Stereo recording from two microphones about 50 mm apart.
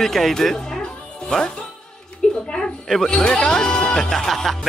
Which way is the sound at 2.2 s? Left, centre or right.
Centre.